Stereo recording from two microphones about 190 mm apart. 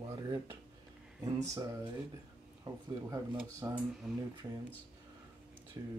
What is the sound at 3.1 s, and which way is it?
Speech, 15° right (ahead or behind).